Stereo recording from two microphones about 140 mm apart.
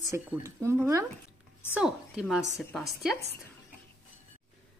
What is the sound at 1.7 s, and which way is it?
A woman's voice, 5° right (ahead or behind).